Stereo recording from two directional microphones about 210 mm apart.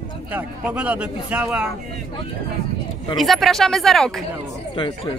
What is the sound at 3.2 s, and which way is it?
Speech, centre (ahead or behind).